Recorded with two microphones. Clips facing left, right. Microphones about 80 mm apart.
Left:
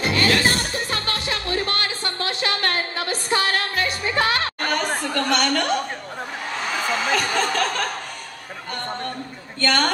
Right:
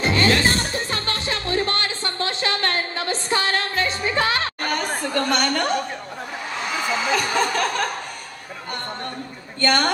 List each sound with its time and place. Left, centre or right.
0.0 s music: right
2.5 s a sound: right
3.3 s music: right
7.1 s chuckle: right
9.6 s a woman's voice: right